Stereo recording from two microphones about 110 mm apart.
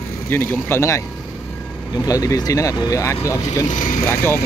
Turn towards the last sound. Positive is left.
turn(degrees=30)  # may be behind; listen again after turning